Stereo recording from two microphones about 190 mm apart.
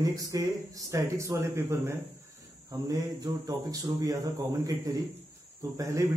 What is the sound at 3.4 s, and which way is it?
A man's voice, 20° right (ahead or behind).